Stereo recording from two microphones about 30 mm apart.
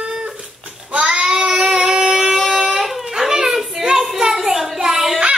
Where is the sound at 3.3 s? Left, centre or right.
Centre.